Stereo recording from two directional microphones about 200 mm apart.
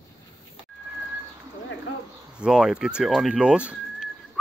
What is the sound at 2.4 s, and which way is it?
Speech, 5° right (ahead or behind).